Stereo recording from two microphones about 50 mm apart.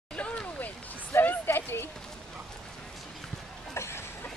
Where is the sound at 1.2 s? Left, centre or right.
Left.